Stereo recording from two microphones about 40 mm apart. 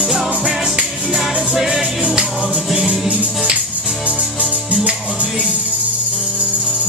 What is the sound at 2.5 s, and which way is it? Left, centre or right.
Music, centre.